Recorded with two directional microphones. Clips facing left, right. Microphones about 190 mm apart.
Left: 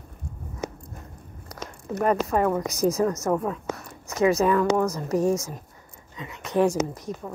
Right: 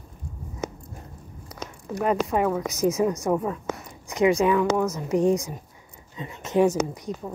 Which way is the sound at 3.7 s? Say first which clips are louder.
Even; 15° right (ahead or behind).